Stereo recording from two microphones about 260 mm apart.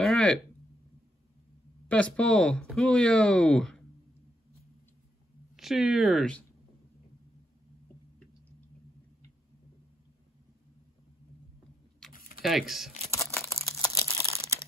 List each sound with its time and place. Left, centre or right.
0.0 s a sound: centre
1.9 s speech: centre
5.6 s speech: centre
12.4 s speech: centre
13.1 s crumpling: centre
13.8 s crumpling: centre